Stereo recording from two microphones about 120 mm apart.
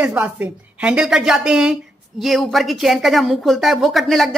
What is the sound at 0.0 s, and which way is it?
A woman's voice, 15° right (ahead or behind).